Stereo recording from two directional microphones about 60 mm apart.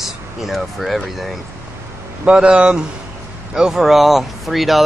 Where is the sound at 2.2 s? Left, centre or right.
Centre.